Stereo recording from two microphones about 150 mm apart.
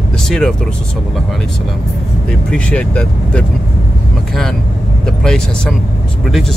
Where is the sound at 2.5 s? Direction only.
10° left (ahead or behind).